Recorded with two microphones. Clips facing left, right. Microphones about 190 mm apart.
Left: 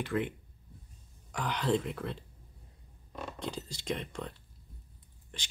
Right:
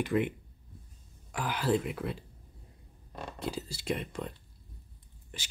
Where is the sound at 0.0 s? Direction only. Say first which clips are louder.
Right 4 dB; 15° right (ahead or behind).